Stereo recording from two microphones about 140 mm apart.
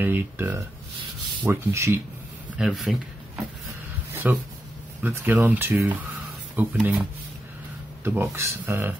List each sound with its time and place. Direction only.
0.0 s speech: 15° right (ahead or behind)
2.5 s speech: 5° right (ahead or behind)
4.2 s speech: 10° right (ahead or behind)
8.0 s speech: 15° right (ahead or behind)